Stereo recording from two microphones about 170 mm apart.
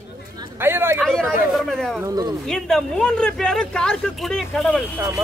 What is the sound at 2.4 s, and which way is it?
Speech, 5° left (ahead or behind).